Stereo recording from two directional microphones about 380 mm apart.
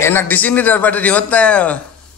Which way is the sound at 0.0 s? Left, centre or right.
Centre.